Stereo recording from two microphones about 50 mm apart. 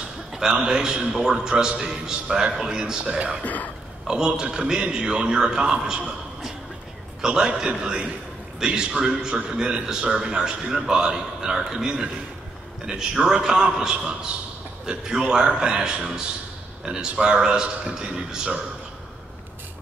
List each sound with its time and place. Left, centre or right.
0.3 s a man's voice: centre
3.4 s speech: left
4.1 s a man's voice: centre
7.2 s a man's voice: centre